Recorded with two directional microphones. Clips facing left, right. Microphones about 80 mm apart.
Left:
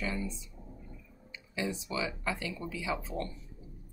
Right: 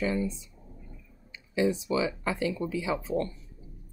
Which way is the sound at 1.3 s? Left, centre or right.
Right.